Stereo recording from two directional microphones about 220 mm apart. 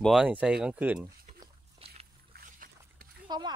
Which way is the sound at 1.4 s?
25° right (ahead or behind).